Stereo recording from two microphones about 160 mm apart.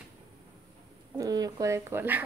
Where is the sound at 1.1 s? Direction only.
25° right (ahead or behind).